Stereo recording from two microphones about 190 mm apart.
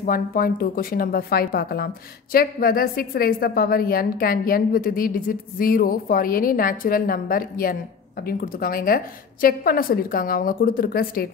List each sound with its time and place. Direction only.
0.0 s a woman's voice: 50° left (ahead or behind)